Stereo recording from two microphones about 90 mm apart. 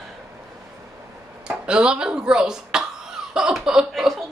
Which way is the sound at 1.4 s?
10° right (ahead or behind).